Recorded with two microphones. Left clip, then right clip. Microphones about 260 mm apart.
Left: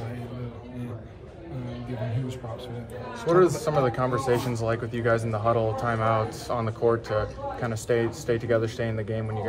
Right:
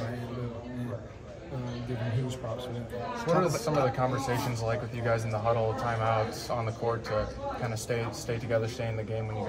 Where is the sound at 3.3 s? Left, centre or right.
Left.